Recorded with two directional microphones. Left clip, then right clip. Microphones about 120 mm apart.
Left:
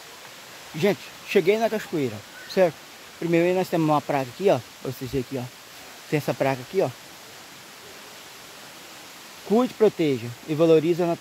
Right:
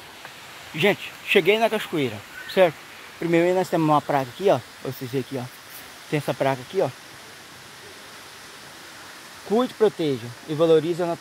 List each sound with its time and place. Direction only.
0.7 s speech: 15° left (ahead or behind)
6.0 s speech: 30° left (ahead or behind)
9.6 s speech: 55° left (ahead or behind)